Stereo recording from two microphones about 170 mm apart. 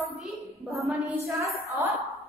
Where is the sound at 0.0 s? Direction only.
Centre (ahead or behind).